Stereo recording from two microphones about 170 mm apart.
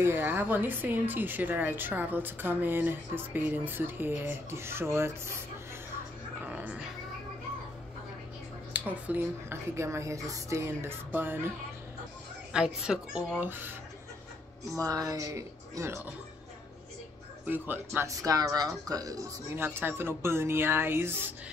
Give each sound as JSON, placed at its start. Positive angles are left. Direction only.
{"t": 0.0, "sound": "a woman's voice", "side_deg": -10}
{"t": 6.4, "sound": "music", "side_deg": -10}
{"t": 8.7, "sound": "a woman's voice", "side_deg": -10}
{"t": 12.5, "sound": "a woman's voice", "side_deg": -5}
{"t": 14.8, "sound": "speech", "side_deg": -20}
{"t": 17.5, "sound": "a woman's voice", "side_deg": -10}